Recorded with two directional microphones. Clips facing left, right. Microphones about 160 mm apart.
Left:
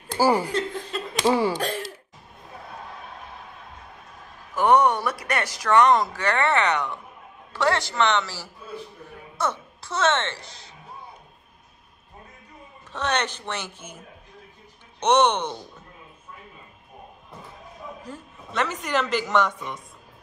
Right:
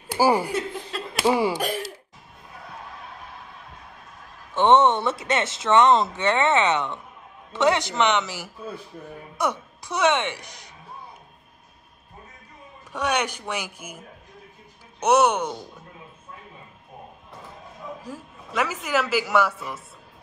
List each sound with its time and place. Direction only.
0.1 s laughter: 10° right (ahead or behind)
4.6 s speech: 25° right (ahead or behind)
12.9 s speech: 10° right (ahead or behind)
18.0 s speech: 10° right (ahead or behind)